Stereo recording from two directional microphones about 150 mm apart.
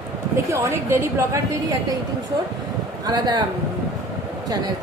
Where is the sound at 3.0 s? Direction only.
30° right (ahead or behind).